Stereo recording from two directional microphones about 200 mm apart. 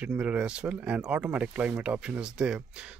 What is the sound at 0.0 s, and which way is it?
Speech, 5° right (ahead or behind).